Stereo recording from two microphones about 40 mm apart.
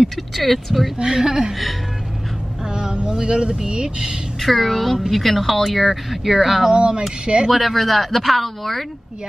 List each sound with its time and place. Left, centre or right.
0.0 s speech: centre
0.9 s a woman's voice: centre
2.7 s speech: right
4.4 s speech: centre
6.7 s speech: right
7.5 s speech: centre